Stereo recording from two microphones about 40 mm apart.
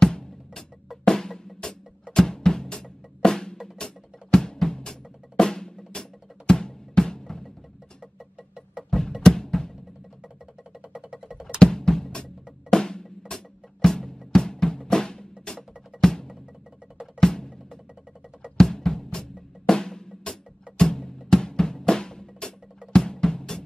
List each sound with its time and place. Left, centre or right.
0.0 s drum: centre
2.1 s music: centre
5.4 s drum: centre
9.2 s music: centre
10.9 s music: centre
11.6 s drum: centre
12.2 s music: centre
17.2 s drum: centre
18.6 s drum: centre